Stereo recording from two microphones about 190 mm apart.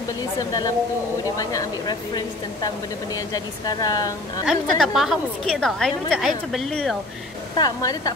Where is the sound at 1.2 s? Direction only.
20° left (ahead or behind).